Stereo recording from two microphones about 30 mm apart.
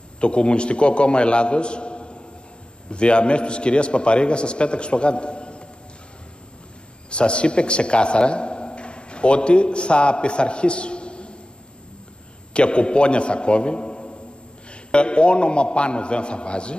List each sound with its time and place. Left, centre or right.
0.2 s a man's voice: left
7.1 s a man's voice: left
12.5 s a man's voice: left